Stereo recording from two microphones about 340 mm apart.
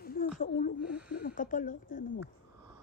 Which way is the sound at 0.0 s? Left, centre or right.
Left.